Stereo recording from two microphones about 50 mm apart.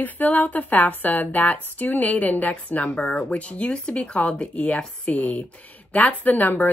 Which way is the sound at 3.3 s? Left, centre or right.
Left.